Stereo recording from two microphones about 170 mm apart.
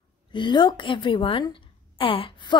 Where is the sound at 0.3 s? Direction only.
25° left (ahead or behind).